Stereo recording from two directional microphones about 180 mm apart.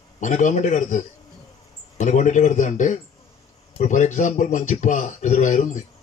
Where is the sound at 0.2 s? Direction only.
45° left (ahead or behind).